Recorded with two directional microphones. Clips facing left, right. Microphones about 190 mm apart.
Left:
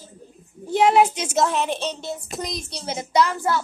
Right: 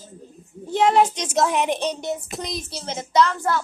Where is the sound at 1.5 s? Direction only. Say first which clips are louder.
Right 2 dB; 15° right (ahead or behind).